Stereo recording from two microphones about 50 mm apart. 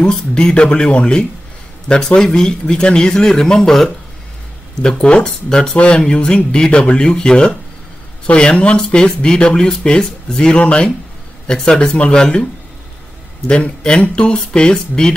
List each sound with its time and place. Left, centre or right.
0.0 s speech: centre
13.5 s speech: centre